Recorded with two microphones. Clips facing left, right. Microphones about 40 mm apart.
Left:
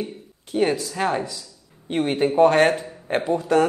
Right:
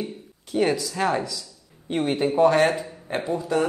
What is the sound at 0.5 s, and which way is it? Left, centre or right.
Speech, left.